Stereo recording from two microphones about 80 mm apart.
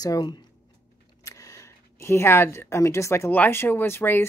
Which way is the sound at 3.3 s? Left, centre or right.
Left.